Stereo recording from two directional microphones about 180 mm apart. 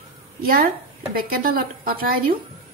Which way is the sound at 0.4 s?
55° right (ahead or behind).